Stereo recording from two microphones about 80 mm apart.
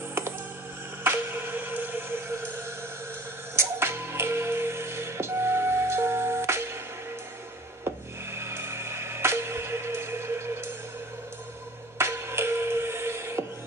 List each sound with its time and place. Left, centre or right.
1.0 s a sound: right
3.5 s music: right
8.4 s music: right
12.0 s music: right